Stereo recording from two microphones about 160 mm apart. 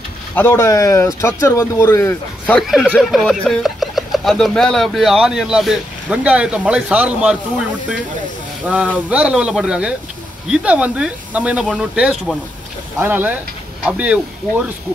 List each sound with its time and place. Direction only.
0.4 s speech: 15° left (ahead or behind)
2.6 s speech: centre (ahead or behind)
8.6 s speech: 10° right (ahead or behind)